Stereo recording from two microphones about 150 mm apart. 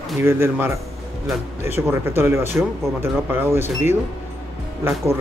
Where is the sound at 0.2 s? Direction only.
15° right (ahead or behind).